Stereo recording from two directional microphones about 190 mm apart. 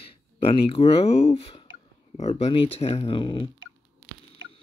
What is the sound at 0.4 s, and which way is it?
Speech, 30° left (ahead or behind).